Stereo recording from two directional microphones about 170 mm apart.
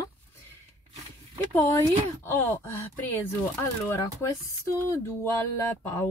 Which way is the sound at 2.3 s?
10° left (ahead or behind).